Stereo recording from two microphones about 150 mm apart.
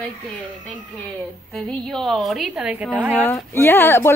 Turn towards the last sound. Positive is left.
turn(degrees=15)  # may be behind; listen again after turning